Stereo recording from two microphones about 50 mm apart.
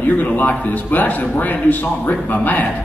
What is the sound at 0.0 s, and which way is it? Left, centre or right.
A man's voice, left.